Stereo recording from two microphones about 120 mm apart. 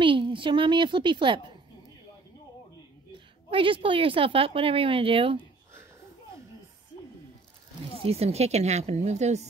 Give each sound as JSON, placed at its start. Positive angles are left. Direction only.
{"t": 0.0, "sound": "a woman's voice", "side_deg": -45}
{"t": 3.4, "sound": "a woman's voice", "side_deg": -45}
{"t": 7.9, "sound": "a woman's voice", "side_deg": -55}